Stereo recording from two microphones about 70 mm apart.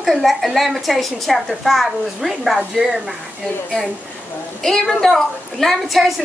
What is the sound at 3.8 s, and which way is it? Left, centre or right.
A woman's voice, centre.